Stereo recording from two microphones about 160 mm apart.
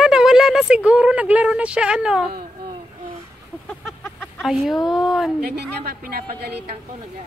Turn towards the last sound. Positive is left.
turn(degrees=-75)  # may be behind; listen again after turning